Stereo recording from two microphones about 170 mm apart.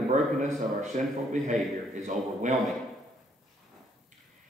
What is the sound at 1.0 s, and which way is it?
A man's voice, 45° right (ahead or behind).